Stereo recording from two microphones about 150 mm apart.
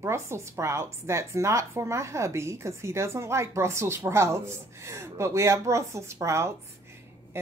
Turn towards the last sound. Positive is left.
turn(degrees=-20)  # may be behind; listen again after turning